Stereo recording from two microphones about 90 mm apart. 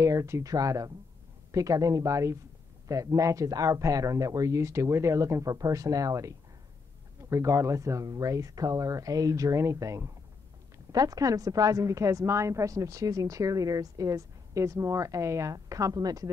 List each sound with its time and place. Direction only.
0.0 s a woman's voice: 35° right (ahead or behind)